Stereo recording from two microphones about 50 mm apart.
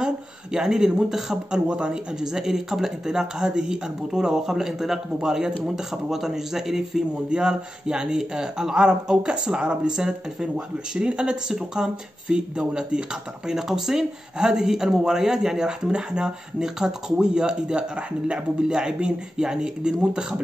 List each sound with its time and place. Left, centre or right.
0.0 s speech: centre